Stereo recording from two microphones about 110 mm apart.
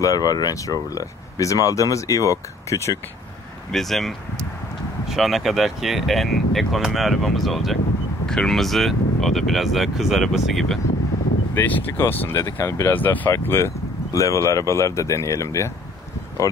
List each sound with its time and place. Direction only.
0.0 s speech: 30° left (ahead or behind)
3.7 s speech: centre (ahead or behind)
11.5 s speech: 15° left (ahead or behind)